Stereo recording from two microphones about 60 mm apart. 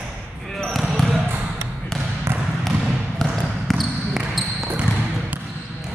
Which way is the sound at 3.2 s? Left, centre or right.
Centre.